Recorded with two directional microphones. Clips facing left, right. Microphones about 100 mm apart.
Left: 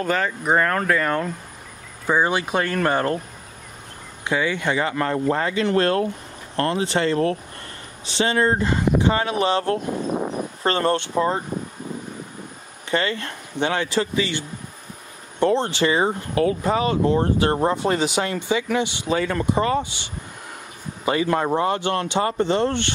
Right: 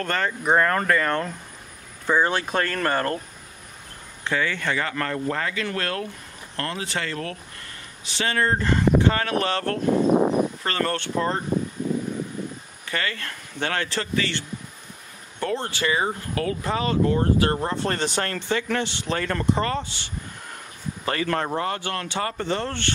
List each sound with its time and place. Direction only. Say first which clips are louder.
0.0 s speech: left 3 dB; 5° left (ahead or behind)
4.2 s speech: left 3 dB; 15° left (ahead or behind)
12.9 s speech: left 6 dB; 25° left (ahead or behind)
15.4 s speech: left 7 dB; 25° left (ahead or behind)